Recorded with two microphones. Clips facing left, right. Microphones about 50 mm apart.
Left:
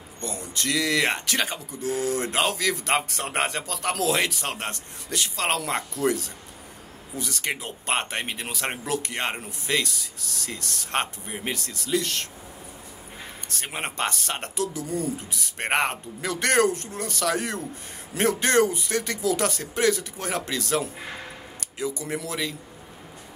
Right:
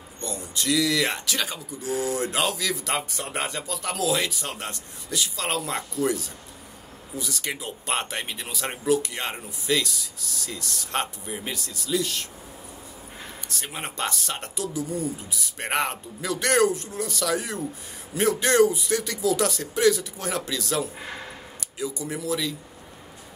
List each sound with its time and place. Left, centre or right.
0.2 s speech: left
3.1 s speech: left
7.2 s speech: left
13.5 s speech: left